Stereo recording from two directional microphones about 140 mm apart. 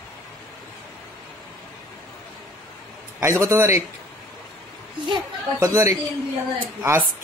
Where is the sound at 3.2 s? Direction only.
20° right (ahead or behind).